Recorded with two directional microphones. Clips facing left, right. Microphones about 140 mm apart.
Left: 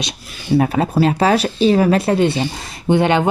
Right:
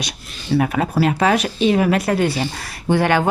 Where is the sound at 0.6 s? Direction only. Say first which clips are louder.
Left 3 dB; 30° left (ahead or behind).